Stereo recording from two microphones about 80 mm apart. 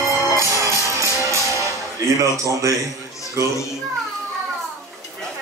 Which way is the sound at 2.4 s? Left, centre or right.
Right.